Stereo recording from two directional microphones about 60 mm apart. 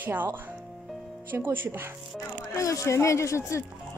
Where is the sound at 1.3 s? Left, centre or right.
Right.